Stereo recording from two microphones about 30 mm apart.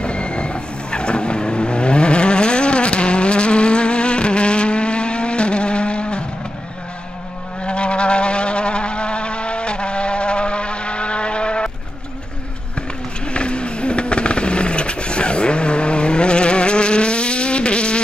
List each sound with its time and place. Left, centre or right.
0.0 s vehicle: left
7.6 s a sound: left
13.3 s vehicle: left